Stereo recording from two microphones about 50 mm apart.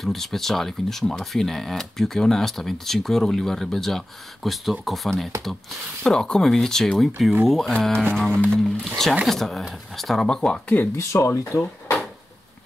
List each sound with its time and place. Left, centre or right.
0.0 s speech: centre
10.2 s speech: centre
11.0 s speech: left